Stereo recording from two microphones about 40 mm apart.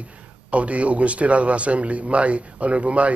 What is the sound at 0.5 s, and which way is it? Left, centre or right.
Speech, right.